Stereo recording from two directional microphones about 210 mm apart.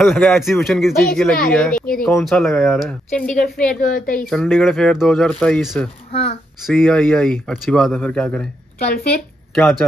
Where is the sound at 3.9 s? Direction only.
40° left (ahead or behind).